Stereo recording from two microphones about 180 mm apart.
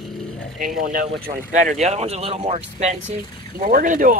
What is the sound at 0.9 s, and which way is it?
Speech, 55° right (ahead or behind).